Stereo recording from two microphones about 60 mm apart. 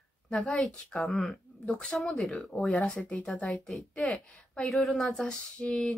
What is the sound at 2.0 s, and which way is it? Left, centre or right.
Speech, centre.